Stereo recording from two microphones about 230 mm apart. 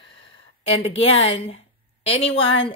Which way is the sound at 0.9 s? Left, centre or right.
Left.